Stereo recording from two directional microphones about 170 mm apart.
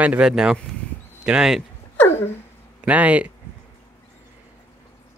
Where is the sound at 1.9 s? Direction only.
10° left (ahead or behind).